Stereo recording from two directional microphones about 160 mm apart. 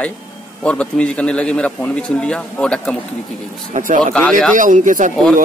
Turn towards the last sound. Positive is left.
turn(degrees=-50)  # may be behind; listen again after turning